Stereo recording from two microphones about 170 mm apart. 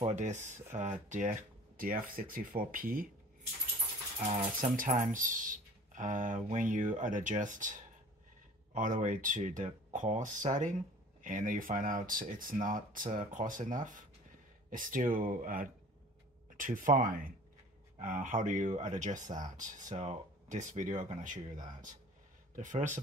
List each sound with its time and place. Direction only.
0.0 s speech: 45° right (ahead or behind)
1.8 s speech: 55° right (ahead or behind)
4.6 s speech: 50° right (ahead or behind)
22.6 s speech: 45° right (ahead or behind)